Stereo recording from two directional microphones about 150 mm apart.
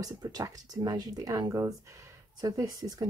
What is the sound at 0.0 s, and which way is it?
Speech, 25° right (ahead or behind).